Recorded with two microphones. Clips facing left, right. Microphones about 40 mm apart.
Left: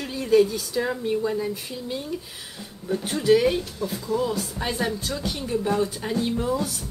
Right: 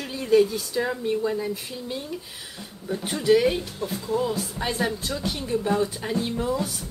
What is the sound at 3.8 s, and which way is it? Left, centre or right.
Speech, right.